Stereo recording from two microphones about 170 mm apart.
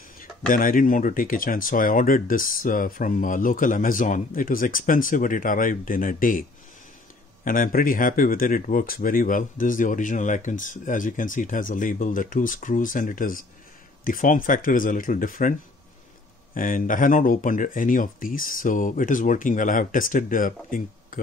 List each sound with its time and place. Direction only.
0.2 s speech: 55° left (ahead or behind)
7.4 s speech: 55° left (ahead or behind)
16.5 s speech: 50° left (ahead or behind)